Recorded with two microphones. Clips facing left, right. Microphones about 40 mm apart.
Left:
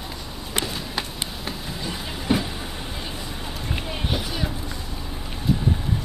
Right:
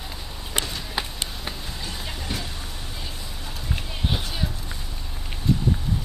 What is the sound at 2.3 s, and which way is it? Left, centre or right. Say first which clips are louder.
Vehicle: left 11 dB; left.